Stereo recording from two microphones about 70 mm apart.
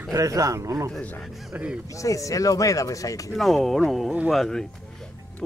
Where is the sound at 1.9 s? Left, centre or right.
Left.